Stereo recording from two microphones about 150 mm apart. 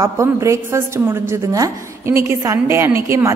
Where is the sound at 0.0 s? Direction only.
20° right (ahead or behind).